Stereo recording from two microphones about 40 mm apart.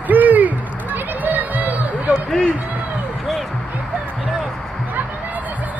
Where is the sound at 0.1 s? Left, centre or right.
Right.